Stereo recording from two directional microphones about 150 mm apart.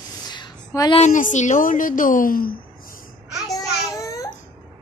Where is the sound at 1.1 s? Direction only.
55° left (ahead or behind); by 2.9 s 75° left (ahead or behind).